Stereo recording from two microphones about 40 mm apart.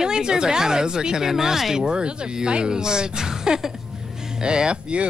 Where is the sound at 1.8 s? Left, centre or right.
Right.